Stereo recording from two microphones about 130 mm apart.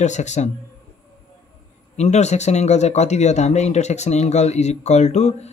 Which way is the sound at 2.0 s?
60° left (ahead or behind).